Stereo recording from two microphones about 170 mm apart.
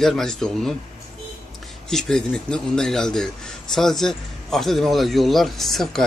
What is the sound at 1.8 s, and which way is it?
A man's voice, 5° left (ahead or behind).